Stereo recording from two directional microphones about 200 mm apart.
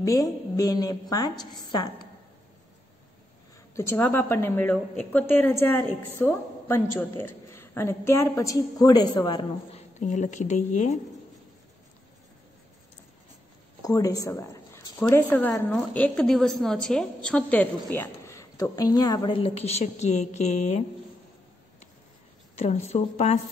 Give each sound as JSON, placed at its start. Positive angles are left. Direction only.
{"t": 0.0, "sound": "a woman's voice", "side_deg": 15}
{"t": 3.7, "sound": "a woman's voice", "side_deg": 10}
{"t": 13.8, "sound": "a woman's voice", "side_deg": 15}
{"t": 22.6, "sound": "a woman's voice", "side_deg": 35}